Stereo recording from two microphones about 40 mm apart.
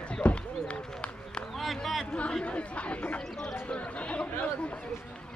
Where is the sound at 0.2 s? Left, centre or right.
Left.